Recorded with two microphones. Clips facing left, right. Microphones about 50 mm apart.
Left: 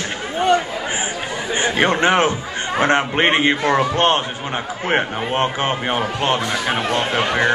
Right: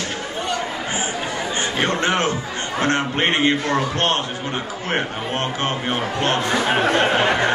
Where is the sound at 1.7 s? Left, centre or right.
Left.